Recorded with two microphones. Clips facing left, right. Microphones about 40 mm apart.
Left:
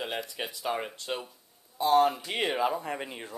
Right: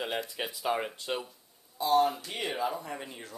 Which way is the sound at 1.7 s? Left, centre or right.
Left.